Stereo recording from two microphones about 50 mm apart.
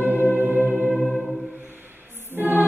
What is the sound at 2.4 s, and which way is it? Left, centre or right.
Music, right.